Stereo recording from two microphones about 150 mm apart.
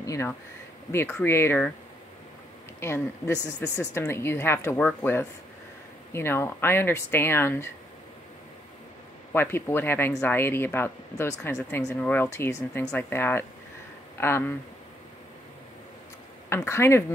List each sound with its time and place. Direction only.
0.0 s speech: 20° left (ahead or behind)
2.8 s speech: 15° left (ahead or behind)
3.3 s speech: 15° right (ahead or behind)
3.9 s speech: 15° left (ahead or behind)
9.3 s speech: 15° left (ahead or behind)
16.4 s speech: 20° left (ahead or behind)